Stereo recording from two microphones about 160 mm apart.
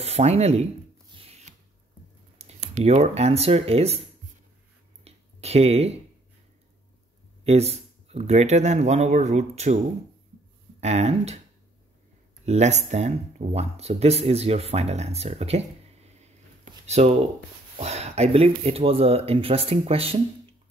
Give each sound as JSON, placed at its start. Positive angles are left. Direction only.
{"t": 0.0, "sound": "speech", "side_deg": -40}
{"t": 2.3, "sound": "speech", "side_deg": -45}
{"t": 5.0, "sound": "a sound", "side_deg": -40}
{"t": 7.4, "sound": "speech", "side_deg": -40}
{"t": 10.8, "sound": "speech", "side_deg": -45}
{"t": 12.4, "sound": "speech", "side_deg": -45}